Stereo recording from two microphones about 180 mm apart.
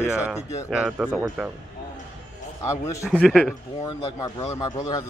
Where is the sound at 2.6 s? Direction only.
15° left (ahead or behind).